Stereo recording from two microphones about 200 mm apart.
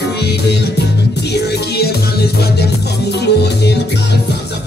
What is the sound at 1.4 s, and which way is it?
Music, 55° left (ahead or behind).